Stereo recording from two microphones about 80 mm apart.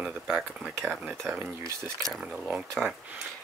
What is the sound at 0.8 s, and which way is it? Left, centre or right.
Speech, right.